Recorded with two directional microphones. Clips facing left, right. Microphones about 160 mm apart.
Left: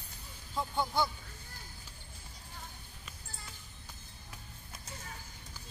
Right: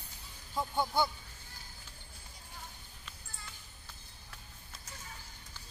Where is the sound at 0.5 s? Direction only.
5° right (ahead or behind).